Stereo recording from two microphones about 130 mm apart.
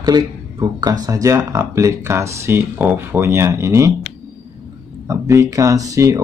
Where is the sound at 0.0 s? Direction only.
30° right (ahead or behind).